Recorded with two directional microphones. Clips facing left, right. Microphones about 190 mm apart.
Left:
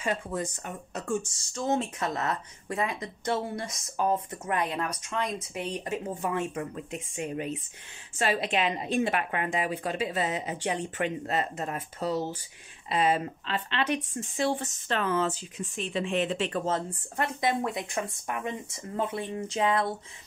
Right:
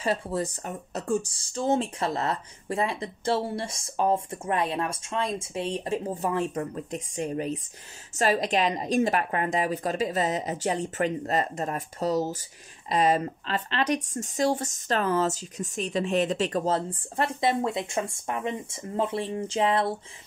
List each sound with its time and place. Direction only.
0.0 s speech: 35° right (ahead or behind)